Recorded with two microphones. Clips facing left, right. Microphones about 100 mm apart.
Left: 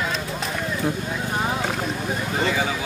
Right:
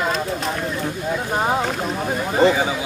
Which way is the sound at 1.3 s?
35° right (ahead or behind).